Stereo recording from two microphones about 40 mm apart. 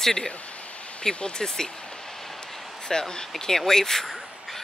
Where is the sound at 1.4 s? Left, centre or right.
Centre.